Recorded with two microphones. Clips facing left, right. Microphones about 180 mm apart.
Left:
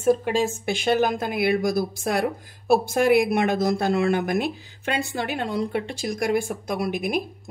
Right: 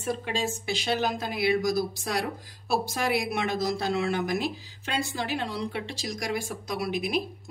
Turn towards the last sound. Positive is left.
turn(degrees=50)  # may be behind; listen again after turning